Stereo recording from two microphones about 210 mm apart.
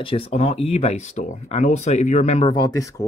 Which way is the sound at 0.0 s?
25° left (ahead or behind).